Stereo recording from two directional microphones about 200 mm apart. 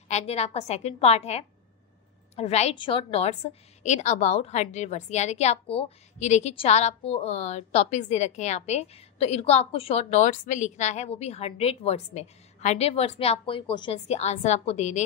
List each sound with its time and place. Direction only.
0.1 s a woman's voice: 30° left (ahead or behind)